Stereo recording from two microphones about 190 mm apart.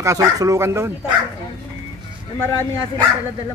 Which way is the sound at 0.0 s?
15° right (ahead or behind).